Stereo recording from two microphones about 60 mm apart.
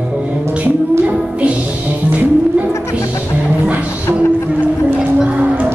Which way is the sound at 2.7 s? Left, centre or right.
Left.